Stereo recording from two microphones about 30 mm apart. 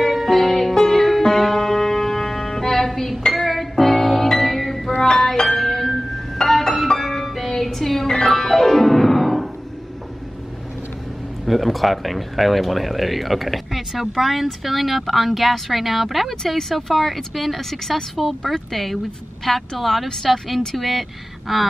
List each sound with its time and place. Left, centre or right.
0.1 s music: centre
3.3 s music: centre
4.9 s music: left; by 9.5 s centre
11.4 s a woman's voice: centre
21.5 s speech: centre